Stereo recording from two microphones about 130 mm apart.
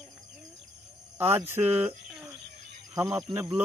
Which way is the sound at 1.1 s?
15° right (ahead or behind).